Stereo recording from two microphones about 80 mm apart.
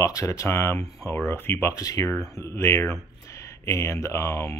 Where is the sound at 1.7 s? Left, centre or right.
Left.